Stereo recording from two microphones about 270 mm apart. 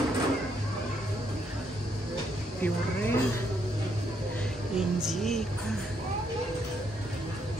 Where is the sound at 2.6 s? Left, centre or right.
Centre.